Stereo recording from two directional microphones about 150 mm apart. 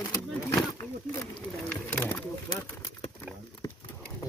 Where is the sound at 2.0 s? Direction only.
15° left (ahead or behind).